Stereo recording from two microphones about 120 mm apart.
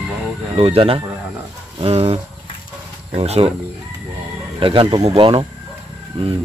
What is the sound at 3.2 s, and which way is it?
Speech, 60° right (ahead or behind).